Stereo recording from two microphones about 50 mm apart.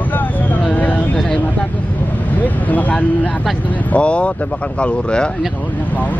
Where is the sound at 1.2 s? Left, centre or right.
Left.